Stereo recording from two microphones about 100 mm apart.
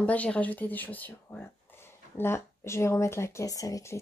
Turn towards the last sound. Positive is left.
turn(degrees=35)  # may be behind; listen again after turning